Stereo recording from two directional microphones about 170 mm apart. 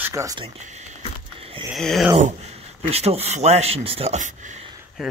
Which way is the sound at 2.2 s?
40° right (ahead or behind).